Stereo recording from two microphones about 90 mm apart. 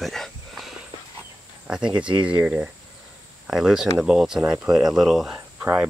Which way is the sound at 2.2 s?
15° right (ahead or behind).